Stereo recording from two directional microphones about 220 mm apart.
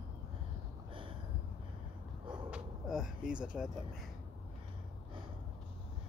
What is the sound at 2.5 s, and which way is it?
Vehicle, 5° right (ahead or behind).